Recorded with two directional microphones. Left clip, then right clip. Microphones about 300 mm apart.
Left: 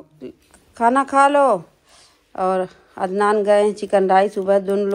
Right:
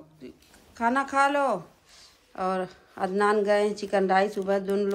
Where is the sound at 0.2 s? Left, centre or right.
Centre.